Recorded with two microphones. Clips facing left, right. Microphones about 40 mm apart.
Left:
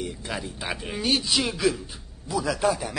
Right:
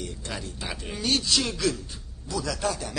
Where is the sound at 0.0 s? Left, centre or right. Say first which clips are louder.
Left 3 dB; centre.